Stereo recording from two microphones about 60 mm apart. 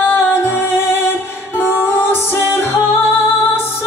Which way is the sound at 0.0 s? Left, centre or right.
Left.